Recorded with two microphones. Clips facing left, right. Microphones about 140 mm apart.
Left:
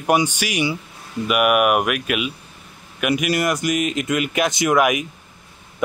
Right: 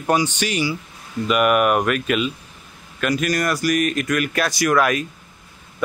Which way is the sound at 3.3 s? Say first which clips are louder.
Even; 20° left (ahead or behind).